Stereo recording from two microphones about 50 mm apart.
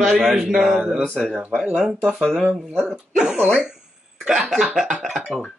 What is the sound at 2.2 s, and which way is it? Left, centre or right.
Speech, centre.